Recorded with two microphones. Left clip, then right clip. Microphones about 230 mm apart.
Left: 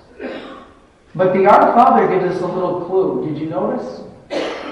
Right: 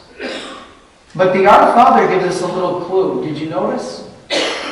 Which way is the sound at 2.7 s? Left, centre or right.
Left.